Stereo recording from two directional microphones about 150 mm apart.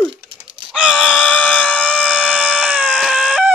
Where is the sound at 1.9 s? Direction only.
10° right (ahead or behind).